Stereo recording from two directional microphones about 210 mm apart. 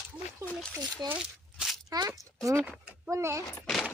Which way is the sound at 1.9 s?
15° right (ahead or behind).